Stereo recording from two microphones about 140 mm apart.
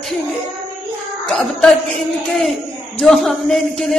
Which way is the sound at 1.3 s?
Centre (ahead or behind).